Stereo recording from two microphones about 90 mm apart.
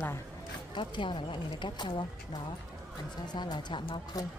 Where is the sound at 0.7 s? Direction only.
65° left (ahead or behind).